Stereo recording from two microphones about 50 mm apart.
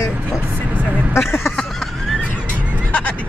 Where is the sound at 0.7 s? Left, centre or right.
Right.